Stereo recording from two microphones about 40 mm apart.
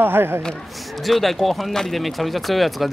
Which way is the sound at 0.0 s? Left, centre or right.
Right.